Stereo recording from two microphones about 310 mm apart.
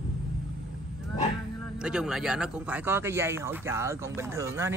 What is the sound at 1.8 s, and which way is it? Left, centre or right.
Speech, centre.